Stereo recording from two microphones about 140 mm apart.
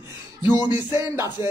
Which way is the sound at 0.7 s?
20° right (ahead or behind).